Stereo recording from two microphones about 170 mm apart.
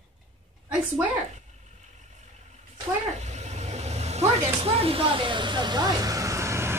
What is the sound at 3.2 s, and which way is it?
Vehicle, 40° right (ahead or behind).